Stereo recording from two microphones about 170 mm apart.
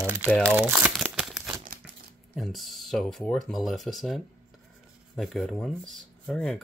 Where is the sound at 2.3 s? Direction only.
Centre (ahead or behind).